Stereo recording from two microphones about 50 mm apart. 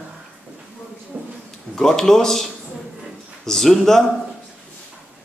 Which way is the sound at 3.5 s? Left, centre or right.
Centre.